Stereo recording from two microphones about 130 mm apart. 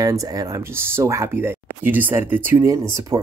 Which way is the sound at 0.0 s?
25° right (ahead or behind).